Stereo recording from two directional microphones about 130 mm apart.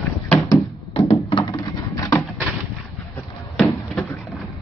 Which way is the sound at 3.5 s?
5° left (ahead or behind).